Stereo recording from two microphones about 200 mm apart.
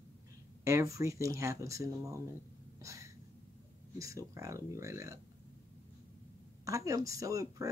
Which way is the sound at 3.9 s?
15° right (ahead or behind).